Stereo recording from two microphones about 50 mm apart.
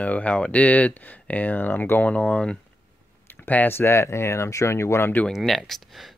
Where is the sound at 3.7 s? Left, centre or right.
Left.